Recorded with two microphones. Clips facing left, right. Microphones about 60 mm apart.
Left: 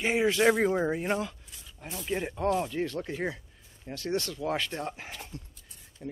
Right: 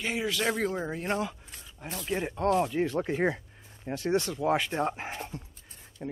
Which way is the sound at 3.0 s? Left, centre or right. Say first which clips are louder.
Right 5 dB; right.